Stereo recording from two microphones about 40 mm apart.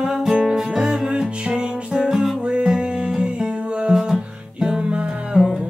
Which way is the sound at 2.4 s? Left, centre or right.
Right.